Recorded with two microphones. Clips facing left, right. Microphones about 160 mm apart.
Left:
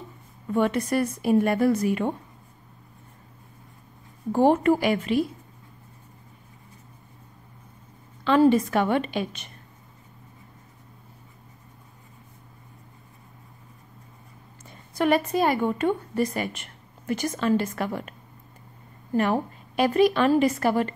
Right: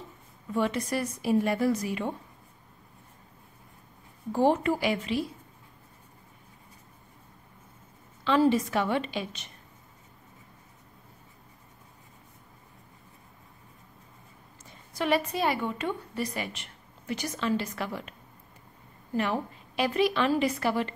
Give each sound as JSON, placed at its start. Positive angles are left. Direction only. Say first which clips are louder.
{"t": 0.5, "sound": "a woman's voice", "louder": "left 5 dB", "side_deg": 55}
{"t": 4.3, "sound": "a woman's voice", "louder": "left 5 dB", "side_deg": 50}
{"t": 8.2, "sound": "a woman's voice", "louder": "left 5 dB", "side_deg": 55}
{"t": 15.0, "sound": "a woman's voice", "louder": "left 5 dB", "side_deg": 50}
{"t": 19.1, "sound": "a woman's voice", "louder": "left 5 dB", "side_deg": 45}